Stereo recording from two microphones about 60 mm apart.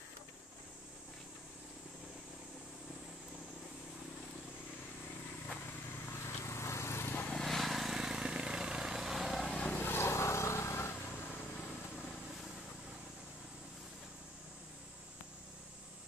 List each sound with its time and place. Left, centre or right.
6.2 s lawn mower: left
7.4 s vehicle: centre
9.5 s vehicle: centre
9.8 s vehicle: left